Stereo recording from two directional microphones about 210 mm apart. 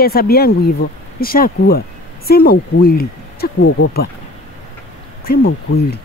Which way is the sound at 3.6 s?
65° left (ahead or behind).